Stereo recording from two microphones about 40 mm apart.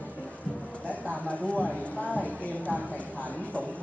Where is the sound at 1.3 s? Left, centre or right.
Left.